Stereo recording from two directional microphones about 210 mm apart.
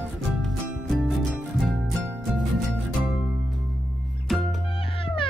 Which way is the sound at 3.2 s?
5° right (ahead or behind).